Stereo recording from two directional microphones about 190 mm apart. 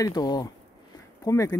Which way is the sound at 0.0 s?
20° left (ahead or behind).